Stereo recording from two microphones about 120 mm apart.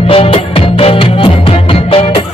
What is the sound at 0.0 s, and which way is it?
Music, 50° left (ahead or behind).